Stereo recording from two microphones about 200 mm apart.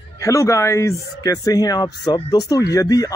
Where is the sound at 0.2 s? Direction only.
15° left (ahead or behind).